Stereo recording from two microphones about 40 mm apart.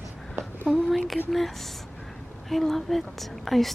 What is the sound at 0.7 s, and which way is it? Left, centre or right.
A woman's voice, centre.